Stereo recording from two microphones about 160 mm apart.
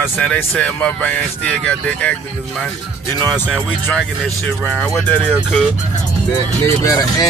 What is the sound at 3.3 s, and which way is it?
Speech, 10° left (ahead or behind).